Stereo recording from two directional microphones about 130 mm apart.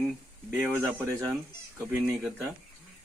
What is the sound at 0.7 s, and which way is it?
Speech, 15° right (ahead or behind).